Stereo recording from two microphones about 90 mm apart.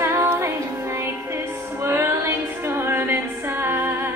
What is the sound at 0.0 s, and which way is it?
Music, 30° right (ahead or behind).